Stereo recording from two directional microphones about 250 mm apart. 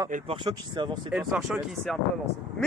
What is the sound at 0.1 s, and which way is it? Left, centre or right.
Speech, right.